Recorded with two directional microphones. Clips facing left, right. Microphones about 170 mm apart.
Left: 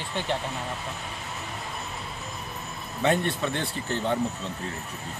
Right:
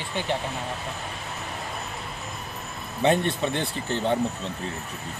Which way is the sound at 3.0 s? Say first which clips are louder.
Right 2 dB; 20° right (ahead or behind).